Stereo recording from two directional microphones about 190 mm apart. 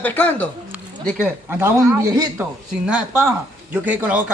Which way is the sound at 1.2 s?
10° right (ahead or behind).